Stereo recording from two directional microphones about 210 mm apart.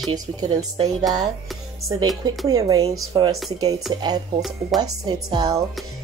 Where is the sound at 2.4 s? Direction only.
15° right (ahead or behind).